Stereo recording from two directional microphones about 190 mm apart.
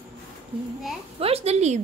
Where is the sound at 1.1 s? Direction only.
30° right (ahead or behind).